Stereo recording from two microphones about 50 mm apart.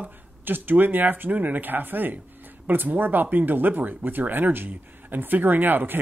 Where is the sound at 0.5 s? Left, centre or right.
Right.